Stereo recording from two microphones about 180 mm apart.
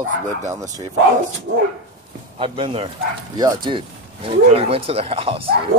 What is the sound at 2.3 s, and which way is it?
Speech, 30° right (ahead or behind).